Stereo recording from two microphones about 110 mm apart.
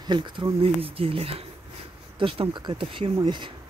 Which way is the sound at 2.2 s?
50° right (ahead or behind).